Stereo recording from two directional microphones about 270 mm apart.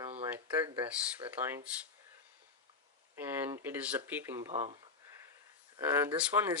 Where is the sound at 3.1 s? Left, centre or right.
Centre.